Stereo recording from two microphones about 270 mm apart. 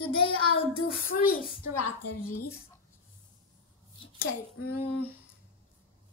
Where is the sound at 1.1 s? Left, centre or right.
Left.